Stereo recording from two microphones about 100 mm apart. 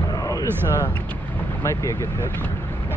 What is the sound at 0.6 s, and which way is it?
Speech, 25° left (ahead or behind).